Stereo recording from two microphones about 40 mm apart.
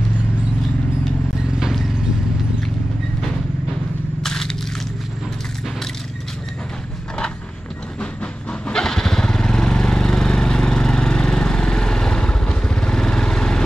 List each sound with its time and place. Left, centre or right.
1.5 s vehicle: centre
4.2 s a sound: centre
8.0 s train: left
8.7 s vehicle: centre